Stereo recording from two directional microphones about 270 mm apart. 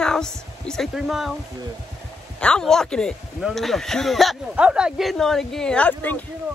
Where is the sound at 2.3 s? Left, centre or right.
Centre.